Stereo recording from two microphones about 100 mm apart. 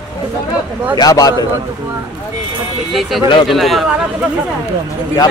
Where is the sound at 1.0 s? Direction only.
40° left (ahead or behind).